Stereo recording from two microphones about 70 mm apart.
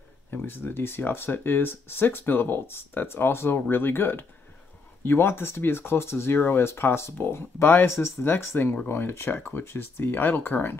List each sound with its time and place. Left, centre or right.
0.5 s speech: left